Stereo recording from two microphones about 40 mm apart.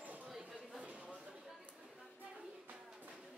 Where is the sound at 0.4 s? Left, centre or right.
Centre.